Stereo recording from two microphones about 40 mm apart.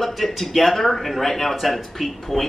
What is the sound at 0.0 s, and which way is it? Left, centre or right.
Speech, centre.